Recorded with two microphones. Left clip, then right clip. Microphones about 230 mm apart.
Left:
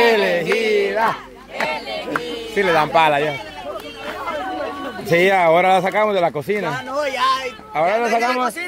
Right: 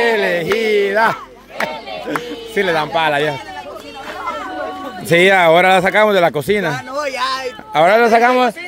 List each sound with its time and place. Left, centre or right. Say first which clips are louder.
0.0 s music: even; centre
0.3 s music: right 2 dB; right
1.6 s a sound: even; right
2.6 s speech: left 1 dB; centre
5.0 s speech: right 4 dB; right
7.8 s speech: right 7 dB; right